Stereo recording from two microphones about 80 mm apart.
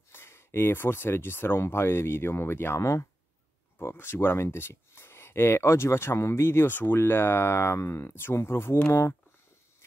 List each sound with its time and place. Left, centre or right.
0.1 s speech: left